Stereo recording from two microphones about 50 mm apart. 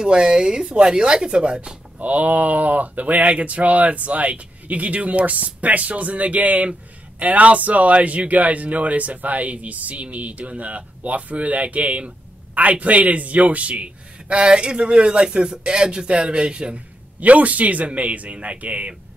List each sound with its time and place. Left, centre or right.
0.0 s speech: centre
2.0 s speech: right